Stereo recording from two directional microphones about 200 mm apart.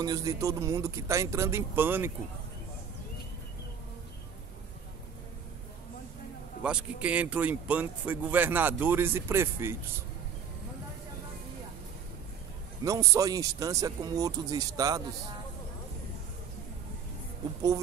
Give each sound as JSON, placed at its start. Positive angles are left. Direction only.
{"t": 0.0, "sound": "speech", "side_deg": -20}
{"t": 6.6, "sound": "speech", "side_deg": -5}
{"t": 12.8, "sound": "speech", "side_deg": -15}